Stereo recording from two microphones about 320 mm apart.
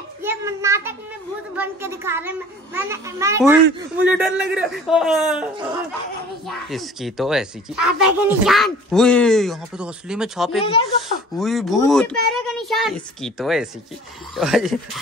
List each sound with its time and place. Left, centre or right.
0.2 s a sound: centre
1.6 s a child's voice: centre
10.6 s speech: centre
11.3 s speech: centre